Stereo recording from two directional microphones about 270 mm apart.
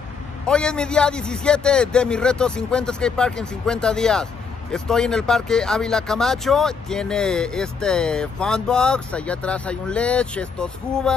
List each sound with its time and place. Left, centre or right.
0.5 s speech: centre